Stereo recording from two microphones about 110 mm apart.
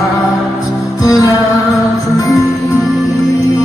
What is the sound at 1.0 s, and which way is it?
Music, 30° left (ahead or behind).